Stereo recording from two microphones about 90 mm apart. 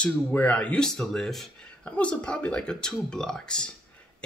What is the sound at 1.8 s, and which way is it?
Speech, 15° left (ahead or behind).